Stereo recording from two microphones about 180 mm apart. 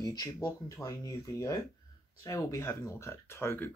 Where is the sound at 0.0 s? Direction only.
20° left (ahead or behind).